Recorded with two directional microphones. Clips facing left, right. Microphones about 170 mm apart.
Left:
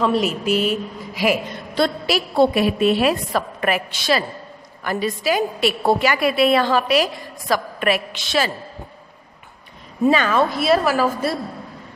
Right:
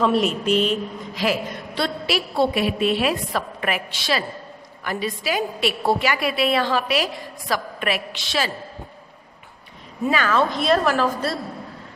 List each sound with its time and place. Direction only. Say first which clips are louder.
0.0 s a woman's voice: even; centre (ahead or behind)
1.8 s a woman's voice: left 4 dB; 40° left (ahead or behind)
10.0 s a woman's voice: left 5 dB; 25° left (ahead or behind)
10.3 s a woman's voice: left 2 dB; 5° left (ahead or behind)